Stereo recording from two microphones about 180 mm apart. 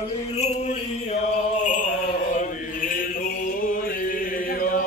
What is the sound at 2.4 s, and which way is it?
Chant, 50° left (ahead or behind).